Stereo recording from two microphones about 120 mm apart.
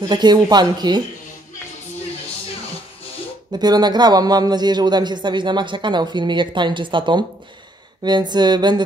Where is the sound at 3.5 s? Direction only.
35° right (ahead or behind).